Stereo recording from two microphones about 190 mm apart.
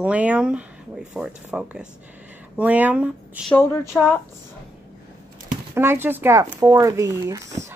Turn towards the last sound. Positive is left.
turn(degrees=-15)  # may be behind; listen again after turning